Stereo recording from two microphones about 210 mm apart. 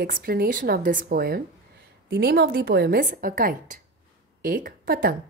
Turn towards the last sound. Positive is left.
turn(degrees=-45)  # may be behind; listen again after turning